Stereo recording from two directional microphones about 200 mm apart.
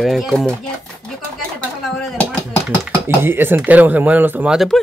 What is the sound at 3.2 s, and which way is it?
Speech, 10° right (ahead or behind).